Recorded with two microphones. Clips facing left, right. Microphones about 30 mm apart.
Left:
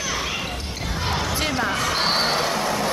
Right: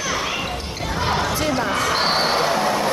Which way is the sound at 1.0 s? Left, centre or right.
Centre.